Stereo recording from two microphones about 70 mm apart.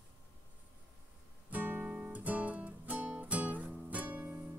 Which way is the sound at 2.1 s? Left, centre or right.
Right.